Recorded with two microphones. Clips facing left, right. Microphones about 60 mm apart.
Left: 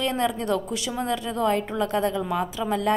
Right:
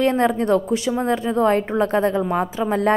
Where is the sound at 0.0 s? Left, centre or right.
Right.